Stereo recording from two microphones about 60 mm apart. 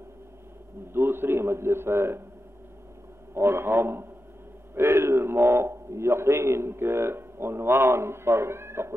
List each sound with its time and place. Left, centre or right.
0.9 s a man's voice: right
3.3 s a man's voice: right